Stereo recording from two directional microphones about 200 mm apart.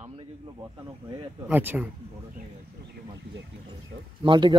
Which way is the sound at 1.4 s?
10° right (ahead or behind).